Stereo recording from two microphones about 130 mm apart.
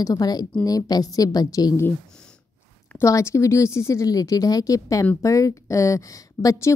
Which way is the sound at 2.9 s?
20° left (ahead or behind).